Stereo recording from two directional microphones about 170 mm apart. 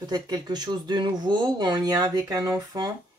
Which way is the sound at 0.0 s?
25° right (ahead or behind).